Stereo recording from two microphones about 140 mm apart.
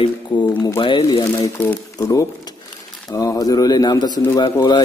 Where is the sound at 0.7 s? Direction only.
35° left (ahead or behind).